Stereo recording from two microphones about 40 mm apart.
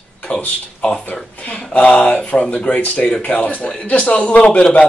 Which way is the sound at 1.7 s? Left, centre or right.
Left.